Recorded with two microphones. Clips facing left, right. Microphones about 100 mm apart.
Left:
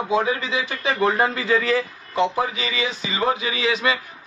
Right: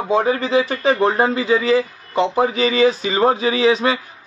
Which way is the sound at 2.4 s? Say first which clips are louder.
Right 10 dB; 35° right (ahead or behind).